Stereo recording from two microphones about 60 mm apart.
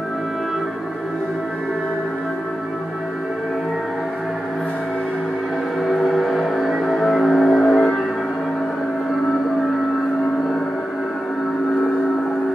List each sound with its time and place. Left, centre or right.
5.9 s music: centre